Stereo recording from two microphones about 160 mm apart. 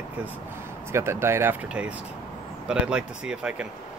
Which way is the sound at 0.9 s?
15° right (ahead or behind).